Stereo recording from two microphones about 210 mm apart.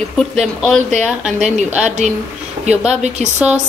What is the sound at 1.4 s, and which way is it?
Speech, 35° right (ahead or behind).